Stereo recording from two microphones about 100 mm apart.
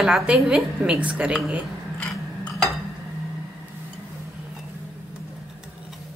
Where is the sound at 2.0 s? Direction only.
10° left (ahead or behind).